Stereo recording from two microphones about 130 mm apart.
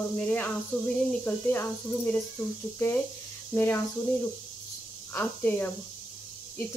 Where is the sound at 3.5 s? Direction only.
15° left (ahead or behind).